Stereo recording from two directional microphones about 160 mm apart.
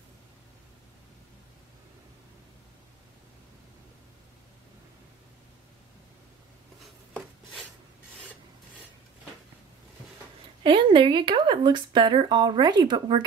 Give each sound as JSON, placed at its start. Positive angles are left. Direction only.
{"t": 6.8, "sound": "chopping", "side_deg": 0}
{"t": 10.6, "sound": "speech", "side_deg": -30}